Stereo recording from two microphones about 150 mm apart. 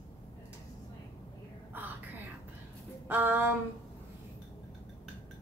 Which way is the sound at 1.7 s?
10° right (ahead or behind).